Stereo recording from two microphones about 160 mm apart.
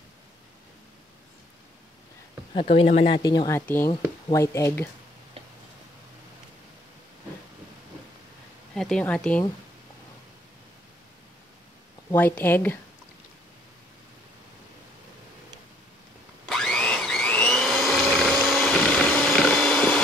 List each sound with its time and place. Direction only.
2.5 s speech: 40° left (ahead or behind)
3.2 s speech: 25° left (ahead or behind)
8.7 s speech: 5° left (ahead or behind)
12.1 s speech: 10° left (ahead or behind)
16.4 s vacuum cleaner: 5° left (ahead or behind)